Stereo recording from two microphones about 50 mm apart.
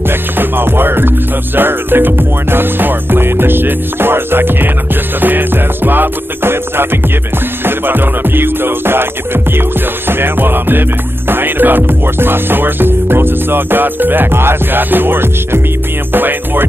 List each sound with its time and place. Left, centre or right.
0.4 s music: right